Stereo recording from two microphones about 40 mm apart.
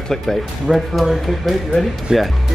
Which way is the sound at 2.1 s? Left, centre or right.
Centre.